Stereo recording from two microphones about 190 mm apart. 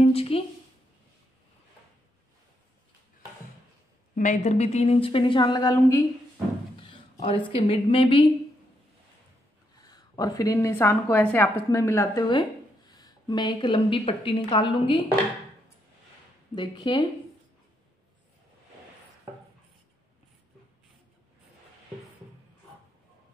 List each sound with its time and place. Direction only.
0.0 s a woman's voice: 30° left (ahead or behind)
4.1 s speech: 40° left (ahead or behind)
9.8 s a woman's voice: 20° left (ahead or behind)
16.5 s speech: 25° left (ahead or behind)